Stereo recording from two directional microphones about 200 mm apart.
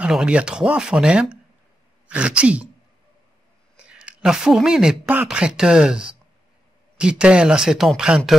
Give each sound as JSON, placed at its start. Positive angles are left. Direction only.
{"t": 0.0, "sound": "speech", "side_deg": -5}
{"t": 3.7, "sound": "speech", "side_deg": -5}